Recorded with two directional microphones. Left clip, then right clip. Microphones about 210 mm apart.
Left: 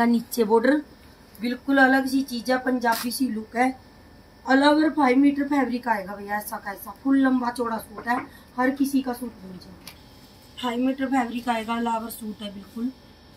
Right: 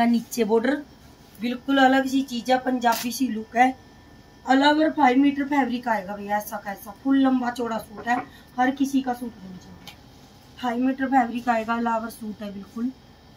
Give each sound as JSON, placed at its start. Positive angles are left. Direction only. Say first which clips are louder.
{"t": 0.0, "sound": "a woman's voice", "louder": "even", "side_deg": -10}
{"t": 10.6, "sound": "a woman's voice", "louder": "right 1 dB", "side_deg": 0}